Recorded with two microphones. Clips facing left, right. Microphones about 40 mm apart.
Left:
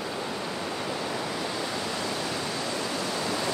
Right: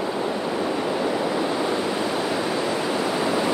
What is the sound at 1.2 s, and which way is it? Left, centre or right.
Waves, right.